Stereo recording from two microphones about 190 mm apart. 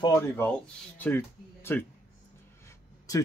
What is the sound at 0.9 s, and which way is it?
Speech, 10° left (ahead or behind).